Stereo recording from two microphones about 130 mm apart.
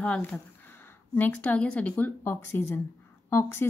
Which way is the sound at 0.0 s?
10° left (ahead or behind).